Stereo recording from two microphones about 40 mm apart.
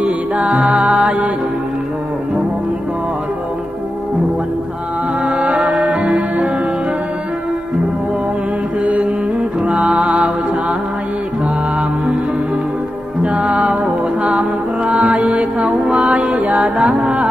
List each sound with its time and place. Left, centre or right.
0.0 s music: right
5.2 s music: right
8.8 s music: right
13.2 s music: right
14.9 s music: right